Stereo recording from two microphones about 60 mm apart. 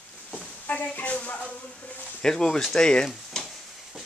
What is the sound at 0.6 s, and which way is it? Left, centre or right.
Speech, left.